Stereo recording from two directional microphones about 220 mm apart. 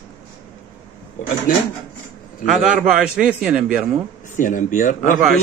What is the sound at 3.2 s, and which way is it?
Speech, 5° right (ahead or behind).